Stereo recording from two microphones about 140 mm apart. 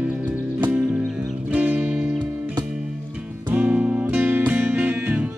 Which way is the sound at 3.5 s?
10° right (ahead or behind).